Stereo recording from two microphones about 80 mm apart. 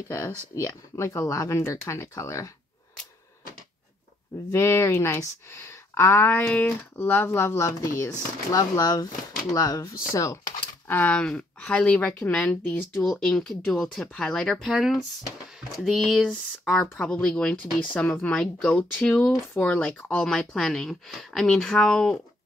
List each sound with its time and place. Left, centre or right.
0.1 s speech: left
4.5 s speech: left
6.4 s speech: centre
7.0 s speech: left
10.9 s speech: centre
12.9 s speech: centre
14.7 s speech: centre
16.3 s speech: centre